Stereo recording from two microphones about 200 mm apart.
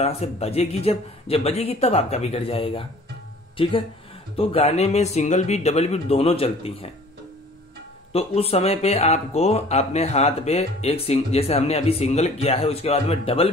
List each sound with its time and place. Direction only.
0.0 s speech: 30° left (ahead or behind)
4.4 s speech: 30° left (ahead or behind)
8.1 s speech: 30° left (ahead or behind)